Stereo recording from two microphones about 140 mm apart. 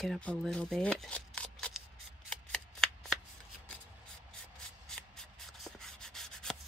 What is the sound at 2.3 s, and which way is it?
Shuffling cards, 5° left (ahead or behind).